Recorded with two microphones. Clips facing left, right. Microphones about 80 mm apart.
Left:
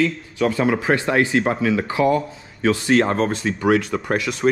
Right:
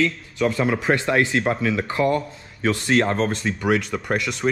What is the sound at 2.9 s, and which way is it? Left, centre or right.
Speech, left.